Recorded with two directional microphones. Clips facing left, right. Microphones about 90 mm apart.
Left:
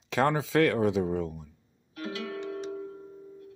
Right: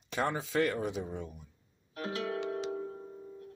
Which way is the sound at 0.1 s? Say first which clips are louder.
Left 7 dB; 90° left.